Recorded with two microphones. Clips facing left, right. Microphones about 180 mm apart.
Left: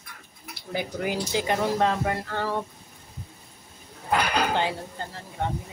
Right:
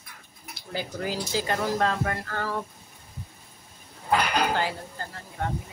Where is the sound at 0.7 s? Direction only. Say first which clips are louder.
Left 3 dB; 15° left (ahead or behind).